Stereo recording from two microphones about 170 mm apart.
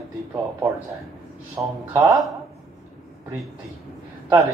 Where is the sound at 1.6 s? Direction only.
10° right (ahead or behind).